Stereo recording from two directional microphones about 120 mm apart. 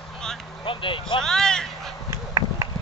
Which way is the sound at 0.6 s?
45° left (ahead or behind).